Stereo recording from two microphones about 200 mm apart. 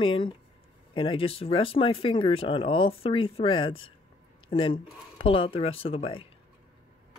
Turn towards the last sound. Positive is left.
turn(degrees=25)  # may be behind; listen again after turning